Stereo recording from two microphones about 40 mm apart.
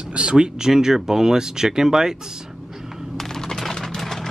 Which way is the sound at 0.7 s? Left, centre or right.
Centre.